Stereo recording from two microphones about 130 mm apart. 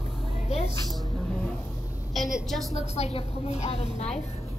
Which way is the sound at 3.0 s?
55° left (ahead or behind).